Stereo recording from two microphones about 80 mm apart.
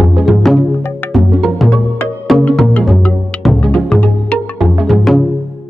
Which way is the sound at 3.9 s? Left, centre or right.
Centre.